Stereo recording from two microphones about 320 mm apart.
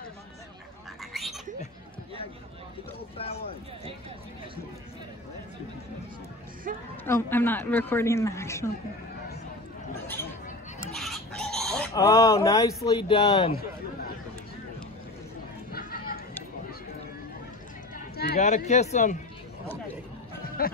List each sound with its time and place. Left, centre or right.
1.1 s a sound: centre
7.1 s a woman's voice: centre
10.8 s chicken: centre
13.5 s a sound: left
15.7 s chatter: left
17.9 s speech: left
20.6 s speech: left